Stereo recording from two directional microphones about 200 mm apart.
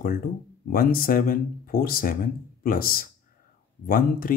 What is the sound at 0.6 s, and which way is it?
Speech, 45° left (ahead or behind).